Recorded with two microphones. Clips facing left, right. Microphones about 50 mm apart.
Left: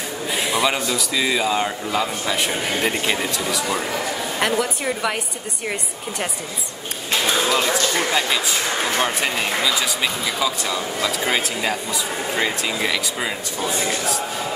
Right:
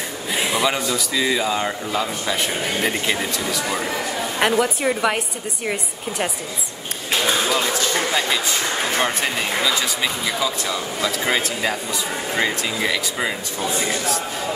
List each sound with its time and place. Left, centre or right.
0.3 s speech: centre
4.4 s a woman's voice: centre
7.1 s a sound: centre
7.5 s speech: centre